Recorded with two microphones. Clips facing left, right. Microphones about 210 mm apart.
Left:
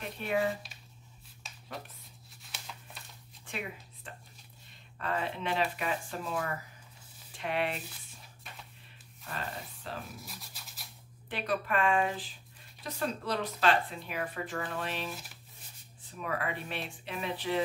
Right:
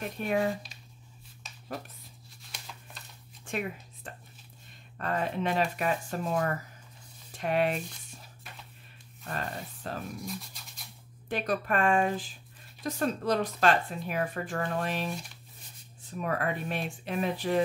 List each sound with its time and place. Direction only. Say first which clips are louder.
0.0 s speech: right 2 dB; 45° right (ahead or behind)
2.4 s a sound: even; centre (ahead or behind)
3.4 s a sound: right 6 dB; 45° right (ahead or behind)
4.9 s speech: right 4 dB; 45° right (ahead or behind)
9.3 s speech: right 4 dB; 45° right (ahead or behind)
10.1 s speech: right 9 dB; centre (ahead or behind)
11.2 s speech: right 3 dB; 45° right (ahead or behind)
16.2 s speech: right 4 dB; 45° right (ahead or behind)